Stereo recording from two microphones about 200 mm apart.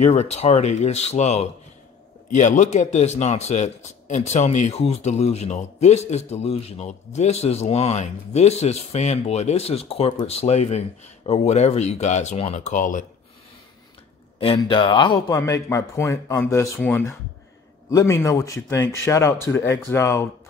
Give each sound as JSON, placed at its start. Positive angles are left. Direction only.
{"t": 0.0, "sound": "speech", "side_deg": 35}
{"t": 14.4, "sound": "speech", "side_deg": 25}